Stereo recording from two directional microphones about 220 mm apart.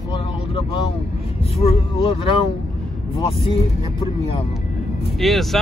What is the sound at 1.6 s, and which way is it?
Speech, 25° left (ahead or behind).